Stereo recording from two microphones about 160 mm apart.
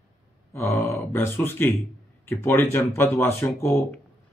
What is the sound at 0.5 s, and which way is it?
A man's voice, 15° left (ahead or behind).